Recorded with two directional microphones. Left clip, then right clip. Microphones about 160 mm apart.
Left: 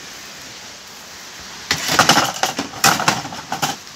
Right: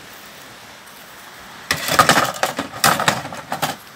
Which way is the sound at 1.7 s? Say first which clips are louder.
Even; 35° right (ahead or behind).